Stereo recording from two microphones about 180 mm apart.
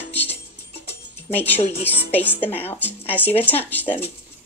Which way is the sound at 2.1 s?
10° left (ahead or behind).